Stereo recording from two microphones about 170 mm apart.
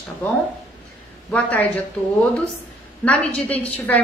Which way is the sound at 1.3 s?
10° left (ahead or behind).